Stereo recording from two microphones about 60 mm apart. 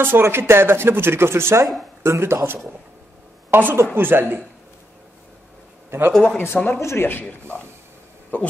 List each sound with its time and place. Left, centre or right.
0.0 s a man's voice: right
3.4 s a woman's voice: right
5.9 s a man's voice: right
6.3 s speech: left
7.1 s a man's voice: left